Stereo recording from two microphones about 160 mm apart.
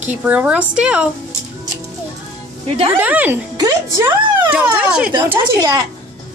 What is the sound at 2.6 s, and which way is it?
Speech, 35° right (ahead or behind).